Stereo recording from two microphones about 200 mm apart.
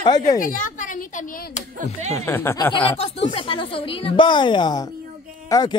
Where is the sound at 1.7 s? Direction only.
35° right (ahead or behind).